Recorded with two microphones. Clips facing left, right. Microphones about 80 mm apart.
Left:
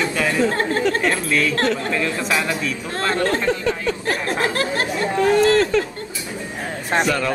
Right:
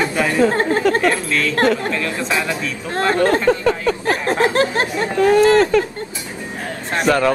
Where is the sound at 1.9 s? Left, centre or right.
Centre.